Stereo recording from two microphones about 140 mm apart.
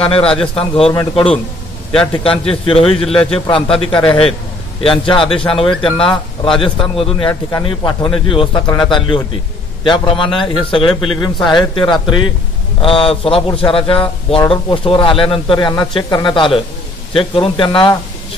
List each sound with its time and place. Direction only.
0.0 s speech: 40° left (ahead or behind)
2.4 s speech: 40° left (ahead or behind)